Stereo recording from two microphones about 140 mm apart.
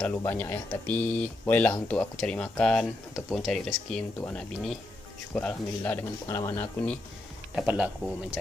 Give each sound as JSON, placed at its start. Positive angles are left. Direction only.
{"t": 0.2, "sound": "speech", "side_deg": 15}
{"t": 7.5, "sound": "speech", "side_deg": -10}